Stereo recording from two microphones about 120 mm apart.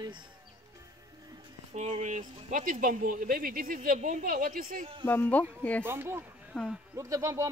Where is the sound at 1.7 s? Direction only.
70° right (ahead or behind); by 2.7 s 85° right.